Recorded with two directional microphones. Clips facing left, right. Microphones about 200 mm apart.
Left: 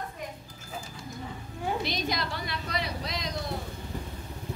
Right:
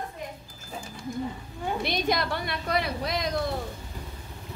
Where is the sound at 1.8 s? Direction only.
60° right (ahead or behind).